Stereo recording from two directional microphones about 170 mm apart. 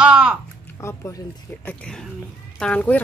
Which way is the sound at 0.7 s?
15° left (ahead or behind).